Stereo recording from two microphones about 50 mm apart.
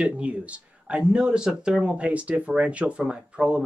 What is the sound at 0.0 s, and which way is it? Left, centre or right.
Speech, right.